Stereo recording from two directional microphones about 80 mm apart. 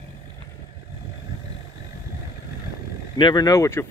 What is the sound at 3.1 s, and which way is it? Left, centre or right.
Speech, left.